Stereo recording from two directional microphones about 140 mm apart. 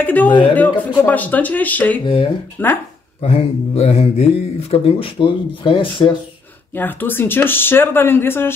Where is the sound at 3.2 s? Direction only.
50° left (ahead or behind).